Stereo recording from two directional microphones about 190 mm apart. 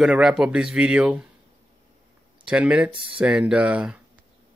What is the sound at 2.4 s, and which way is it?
Speech, 5° right (ahead or behind).